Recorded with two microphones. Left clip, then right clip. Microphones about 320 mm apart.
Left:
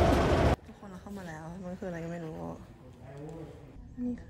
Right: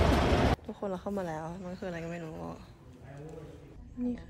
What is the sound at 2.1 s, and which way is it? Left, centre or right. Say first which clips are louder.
Speech: left 1 dB; left.